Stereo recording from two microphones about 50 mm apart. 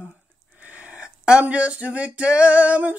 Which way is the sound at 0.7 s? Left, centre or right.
Right.